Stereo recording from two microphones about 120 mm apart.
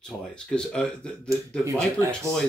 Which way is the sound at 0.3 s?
5° left (ahead or behind).